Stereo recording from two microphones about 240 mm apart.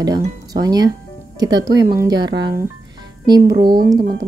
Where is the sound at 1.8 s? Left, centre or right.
Right.